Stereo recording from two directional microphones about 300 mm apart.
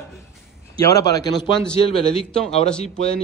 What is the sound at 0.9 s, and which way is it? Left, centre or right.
Speech, centre.